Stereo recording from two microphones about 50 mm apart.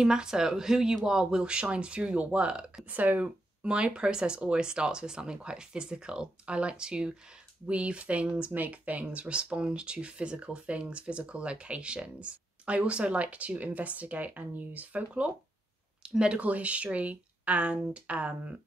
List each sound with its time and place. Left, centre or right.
0.0 s speech: centre; by 3.3 s right
3.6 s speech: centre
9.2 s speech: right
16.0 s a sound: centre
16.3 s speech: right